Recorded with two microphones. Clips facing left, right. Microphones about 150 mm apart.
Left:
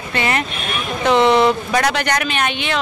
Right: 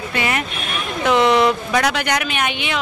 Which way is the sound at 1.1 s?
30° left (ahead or behind).